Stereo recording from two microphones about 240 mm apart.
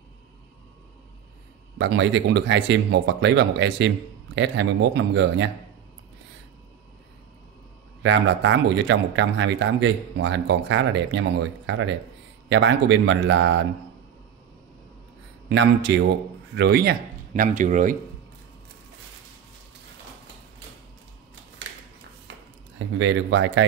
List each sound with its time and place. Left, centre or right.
1.8 s speech: right
8.0 s speech: right
15.4 s speech: right
17.3 s speech: right
22.8 s speech: right